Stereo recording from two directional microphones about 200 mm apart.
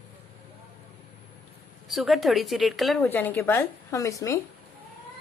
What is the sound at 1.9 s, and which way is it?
A woman's voice, centre (ahead or behind).